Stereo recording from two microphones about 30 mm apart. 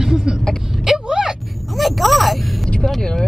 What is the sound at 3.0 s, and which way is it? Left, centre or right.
Speech, left.